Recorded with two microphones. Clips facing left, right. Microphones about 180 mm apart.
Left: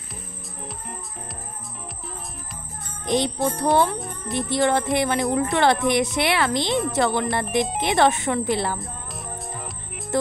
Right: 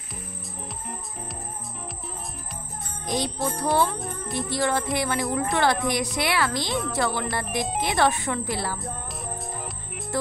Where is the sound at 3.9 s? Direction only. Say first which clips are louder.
Left 1 dB; centre (ahead or behind).